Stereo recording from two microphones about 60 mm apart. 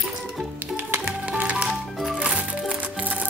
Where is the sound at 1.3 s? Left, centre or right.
Right.